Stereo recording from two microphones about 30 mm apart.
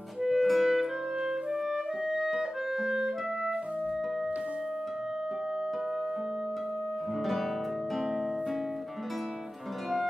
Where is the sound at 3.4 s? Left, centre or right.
Right.